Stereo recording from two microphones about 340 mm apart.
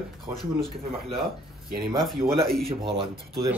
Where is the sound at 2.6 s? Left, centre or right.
Centre.